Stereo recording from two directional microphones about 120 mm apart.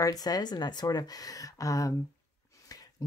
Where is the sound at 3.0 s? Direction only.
30° left (ahead or behind).